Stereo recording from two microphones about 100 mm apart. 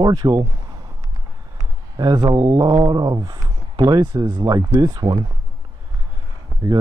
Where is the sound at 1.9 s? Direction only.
40° right (ahead or behind).